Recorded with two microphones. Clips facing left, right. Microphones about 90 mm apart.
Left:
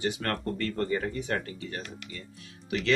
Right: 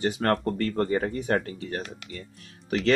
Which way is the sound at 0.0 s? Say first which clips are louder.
Right 6 dB; 40° right (ahead or behind).